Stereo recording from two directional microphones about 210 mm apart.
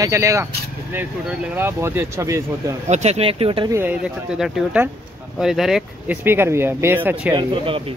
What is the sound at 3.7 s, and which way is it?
Speech, 10° right (ahead or behind).